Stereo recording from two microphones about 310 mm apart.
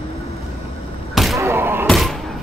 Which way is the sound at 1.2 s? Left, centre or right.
Centre.